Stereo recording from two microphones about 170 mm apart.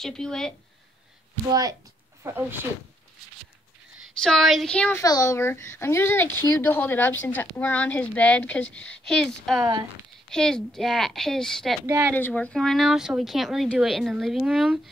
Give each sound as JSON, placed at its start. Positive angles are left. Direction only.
{"t": 0.0, "sound": "speech", "side_deg": 5}
{"t": 1.5, "sound": "speech", "side_deg": -20}
{"t": 4.2, "sound": "speech", "side_deg": 0}
{"t": 5.0, "sound": "speech", "side_deg": 20}
{"t": 11.8, "sound": "speech", "side_deg": -15}
{"t": 12.2, "sound": "speech", "side_deg": 10}